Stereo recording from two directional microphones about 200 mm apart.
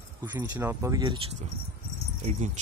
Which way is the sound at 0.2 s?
10° right (ahead or behind).